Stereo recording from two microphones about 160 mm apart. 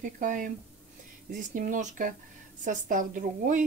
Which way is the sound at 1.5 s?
55° right (ahead or behind).